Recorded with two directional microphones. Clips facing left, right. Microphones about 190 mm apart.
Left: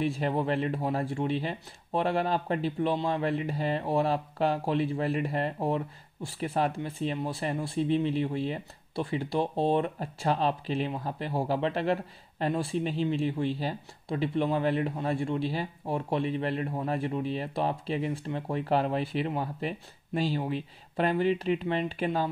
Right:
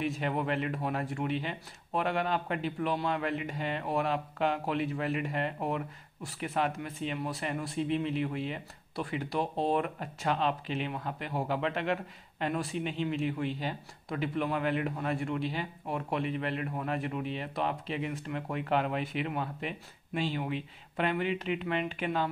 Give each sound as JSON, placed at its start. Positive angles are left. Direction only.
{"t": 0.0, "sound": "speech", "side_deg": 30}